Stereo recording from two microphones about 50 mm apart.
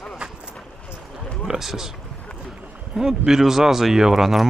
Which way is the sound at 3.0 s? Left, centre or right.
Centre.